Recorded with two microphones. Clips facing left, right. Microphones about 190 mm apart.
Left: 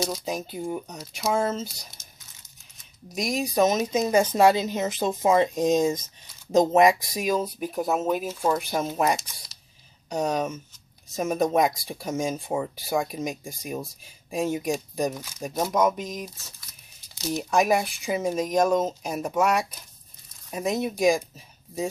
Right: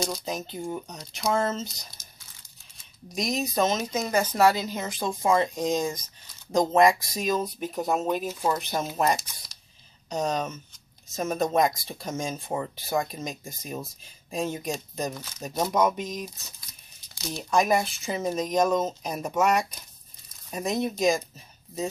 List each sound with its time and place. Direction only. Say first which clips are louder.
0.0 s speech: left 2 dB; 5° left (ahead or behind)
3.2 s speech: left 3 dB; 10° left (ahead or behind)
7.6 s speech: left 1 dB; 5° left (ahead or behind)
8.5 s speech: left 2 dB; 10° left (ahead or behind)
17.1 s speech: left 1 dB; 15° left (ahead or behind)